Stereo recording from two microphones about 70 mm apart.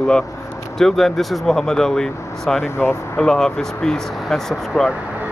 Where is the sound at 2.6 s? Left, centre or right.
Left.